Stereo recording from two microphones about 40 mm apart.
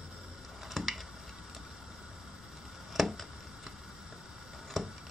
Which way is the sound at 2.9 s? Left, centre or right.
Centre.